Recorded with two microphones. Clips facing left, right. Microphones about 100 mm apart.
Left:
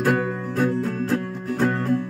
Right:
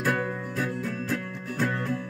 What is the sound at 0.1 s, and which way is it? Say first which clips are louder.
Music: left 6 dB; 30° left (ahead or behind).